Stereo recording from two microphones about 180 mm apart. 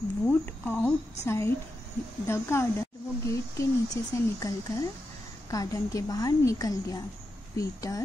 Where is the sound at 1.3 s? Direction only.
15° left (ahead or behind).